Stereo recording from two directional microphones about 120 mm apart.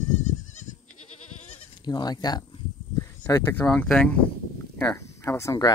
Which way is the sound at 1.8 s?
40° left (ahead or behind).